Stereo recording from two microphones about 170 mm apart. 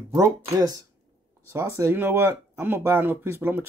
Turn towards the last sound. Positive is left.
turn(degrees=-10)  # may be behind; listen again after turning